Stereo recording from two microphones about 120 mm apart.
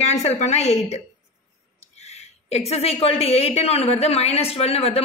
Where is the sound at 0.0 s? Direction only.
65° left (ahead or behind).